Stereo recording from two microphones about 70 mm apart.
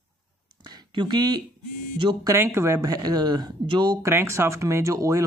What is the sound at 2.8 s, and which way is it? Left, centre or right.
Speech, right.